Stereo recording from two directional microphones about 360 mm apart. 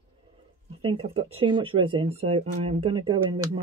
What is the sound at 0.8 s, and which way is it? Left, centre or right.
Speech, centre.